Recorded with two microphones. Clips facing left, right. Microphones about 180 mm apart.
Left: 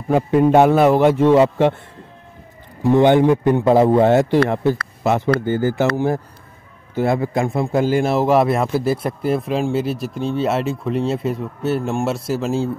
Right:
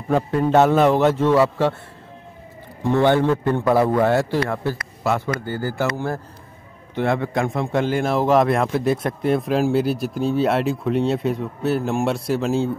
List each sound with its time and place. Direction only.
0.1 s a man's voice: 10° left (ahead or behind)
2.8 s a man's voice: 15° left (ahead or behind); by 12.7 s centre (ahead or behind)